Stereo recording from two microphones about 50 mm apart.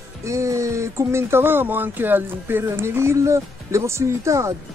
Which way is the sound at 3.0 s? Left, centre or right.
Right.